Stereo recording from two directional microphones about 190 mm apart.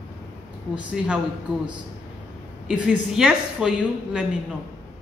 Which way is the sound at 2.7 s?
5° right (ahead or behind).